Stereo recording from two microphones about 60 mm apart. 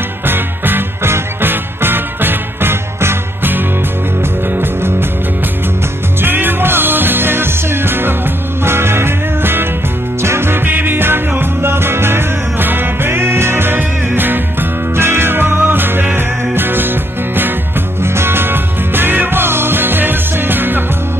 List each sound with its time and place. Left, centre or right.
0.3 s music: right
6.2 s music: right
18.0 s music: right